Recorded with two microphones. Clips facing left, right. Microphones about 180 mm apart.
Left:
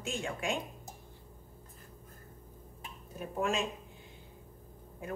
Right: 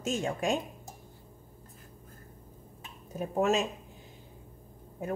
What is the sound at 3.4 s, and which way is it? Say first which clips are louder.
Speech: right 6 dB; 45° right (ahead or behind).